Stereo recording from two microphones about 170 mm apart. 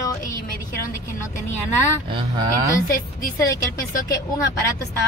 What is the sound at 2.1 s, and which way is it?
Speech, 25° right (ahead or behind).